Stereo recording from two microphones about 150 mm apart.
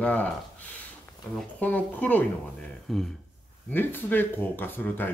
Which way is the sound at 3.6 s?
15° left (ahead or behind).